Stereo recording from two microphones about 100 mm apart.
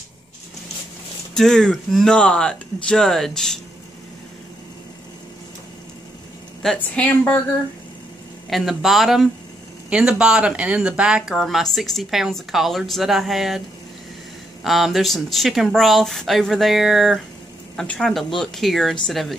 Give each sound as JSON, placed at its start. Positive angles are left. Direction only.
{"t": 1.3, "sound": "speech", "side_deg": 5}
{"t": 6.6, "sound": "a woman's voice", "side_deg": 10}
{"t": 8.5, "sound": "speech", "side_deg": 0}
{"t": 9.8, "sound": "speech", "side_deg": -10}
{"t": 14.6, "sound": "speech", "side_deg": 0}